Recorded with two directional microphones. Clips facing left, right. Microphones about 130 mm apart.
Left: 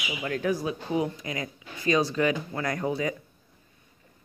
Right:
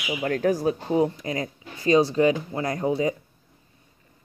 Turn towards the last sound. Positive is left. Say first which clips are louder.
# right 4 dB
turn(degrees=-25)  # may be behind; listen again after turning